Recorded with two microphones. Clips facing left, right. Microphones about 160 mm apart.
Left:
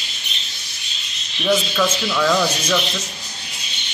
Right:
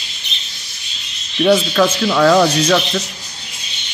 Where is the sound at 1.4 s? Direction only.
60° right (ahead or behind).